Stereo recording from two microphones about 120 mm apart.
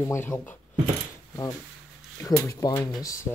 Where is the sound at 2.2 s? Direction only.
30° left (ahead or behind).